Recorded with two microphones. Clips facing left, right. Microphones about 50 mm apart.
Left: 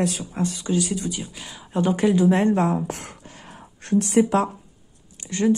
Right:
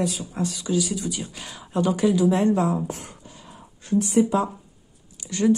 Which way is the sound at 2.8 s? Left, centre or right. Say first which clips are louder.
Left 1 dB; left.